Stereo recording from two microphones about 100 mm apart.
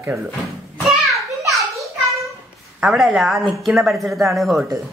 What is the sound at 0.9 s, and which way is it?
Children playing, centre (ahead or behind).